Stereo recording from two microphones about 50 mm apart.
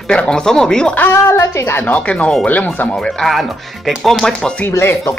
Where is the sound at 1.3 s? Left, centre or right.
Left.